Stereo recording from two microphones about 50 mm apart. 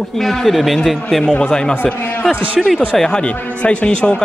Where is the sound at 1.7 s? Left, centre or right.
Left.